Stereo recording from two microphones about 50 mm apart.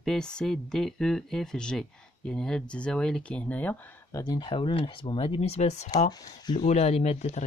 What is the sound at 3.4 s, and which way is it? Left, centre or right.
Speech, left.